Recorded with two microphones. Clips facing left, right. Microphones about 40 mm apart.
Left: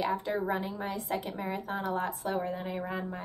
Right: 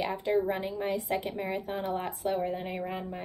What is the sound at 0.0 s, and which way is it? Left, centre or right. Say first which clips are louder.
A woman's voice: right 2 dB; centre.